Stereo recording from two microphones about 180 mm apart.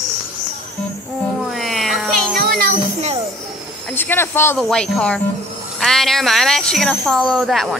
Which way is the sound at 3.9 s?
10° left (ahead or behind).